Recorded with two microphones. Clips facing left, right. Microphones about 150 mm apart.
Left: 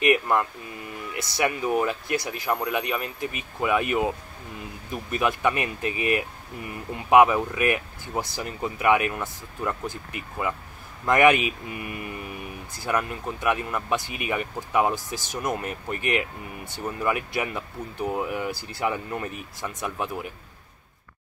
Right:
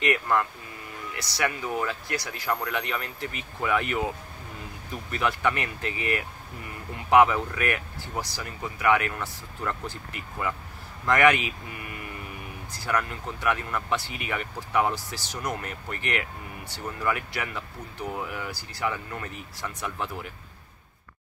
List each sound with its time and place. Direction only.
0.0 s speech: 20° left (ahead or behind)
5.1 s speech: 15° left (ahead or behind)
11.1 s speech: 20° left (ahead or behind)